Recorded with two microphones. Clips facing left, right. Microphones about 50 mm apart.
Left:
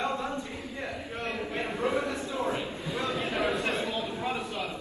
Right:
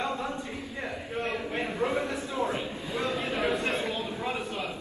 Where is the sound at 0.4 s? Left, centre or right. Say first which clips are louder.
Right 1 dB; right.